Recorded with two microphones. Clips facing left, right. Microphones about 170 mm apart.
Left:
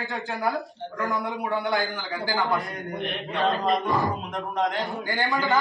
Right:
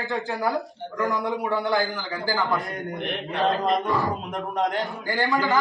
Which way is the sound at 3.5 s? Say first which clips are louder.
Even; centre (ahead or behind).